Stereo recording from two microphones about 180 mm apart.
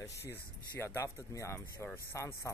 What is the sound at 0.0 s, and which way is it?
Speech, 15° left (ahead or behind).